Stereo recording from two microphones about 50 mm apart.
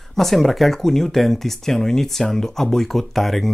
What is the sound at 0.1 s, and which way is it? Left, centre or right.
Speech, centre.